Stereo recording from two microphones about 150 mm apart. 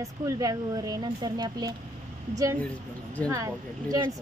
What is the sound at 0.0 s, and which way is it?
Speech, 25° right (ahead or behind).